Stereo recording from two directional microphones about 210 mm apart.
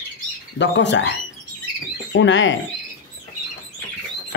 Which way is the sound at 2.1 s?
60° left (ahead or behind).